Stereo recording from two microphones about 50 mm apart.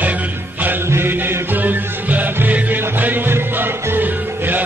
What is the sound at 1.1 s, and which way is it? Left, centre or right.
Music, right.